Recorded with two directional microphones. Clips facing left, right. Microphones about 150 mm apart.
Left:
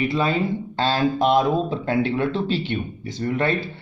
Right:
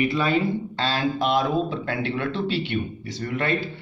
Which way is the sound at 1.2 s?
45° left (ahead or behind).